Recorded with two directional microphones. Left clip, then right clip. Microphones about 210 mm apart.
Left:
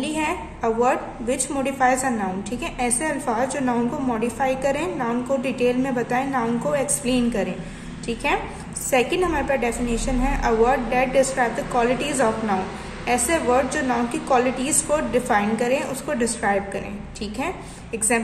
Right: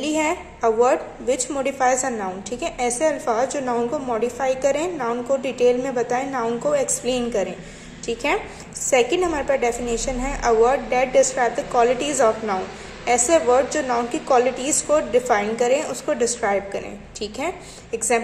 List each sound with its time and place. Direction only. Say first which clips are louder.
0.0 s a woman's voice: right 3 dB; 20° right (ahead or behind)